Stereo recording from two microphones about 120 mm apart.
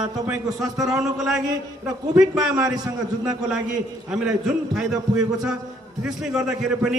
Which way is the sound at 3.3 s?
5° right (ahead or behind).